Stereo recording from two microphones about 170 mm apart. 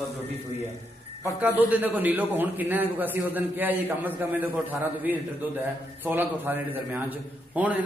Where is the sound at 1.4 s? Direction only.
10° right (ahead or behind).